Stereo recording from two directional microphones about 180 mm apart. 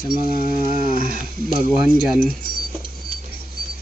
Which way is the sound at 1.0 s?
55° right (ahead or behind).